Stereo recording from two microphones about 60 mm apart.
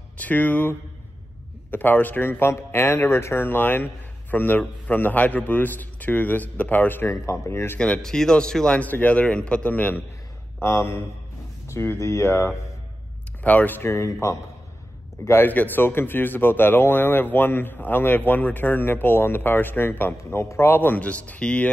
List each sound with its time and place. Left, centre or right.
0.2 s a man's voice: left
3.4 s a man's voice: left
7.1 s speech: left
7.8 s speech: centre
8.7 s a man's voice: left
10.6 s speech: left
13.4 s a man's voice: left
13.8 s speech: left
15.4 s a man's voice: left